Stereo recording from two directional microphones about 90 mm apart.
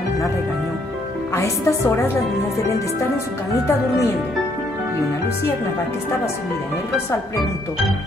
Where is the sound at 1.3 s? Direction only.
35° left (ahead or behind).